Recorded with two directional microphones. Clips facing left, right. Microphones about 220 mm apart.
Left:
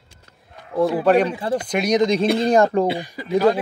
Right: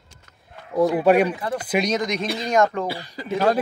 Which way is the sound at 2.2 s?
50° left (ahead or behind).